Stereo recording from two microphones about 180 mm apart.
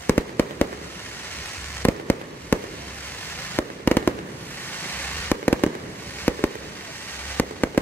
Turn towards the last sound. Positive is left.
turn(degrees=10)  # may be behind; listen again after turning